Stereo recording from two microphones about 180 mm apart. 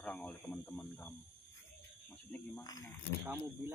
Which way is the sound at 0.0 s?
5° left (ahead or behind).